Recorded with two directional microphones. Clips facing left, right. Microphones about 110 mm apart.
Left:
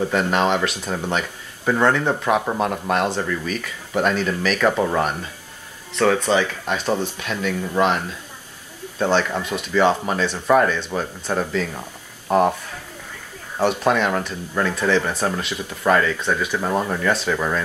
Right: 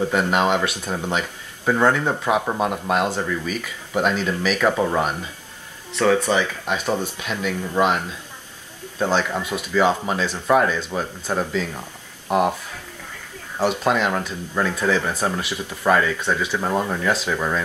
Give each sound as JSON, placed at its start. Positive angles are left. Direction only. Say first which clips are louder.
{"t": 0.1, "sound": "speech", "louder": "even", "side_deg": -10}
{"t": 5.9, "sound": "speech", "louder": "even", "side_deg": -15}
{"t": 9.0, "sound": "speech", "louder": "left 1 dB", "side_deg": -10}
{"t": 13.6, "sound": "speech", "louder": "left 1 dB", "side_deg": -10}
{"t": 17.0, "sound": "speech", "louder": "left 1 dB", "side_deg": -5}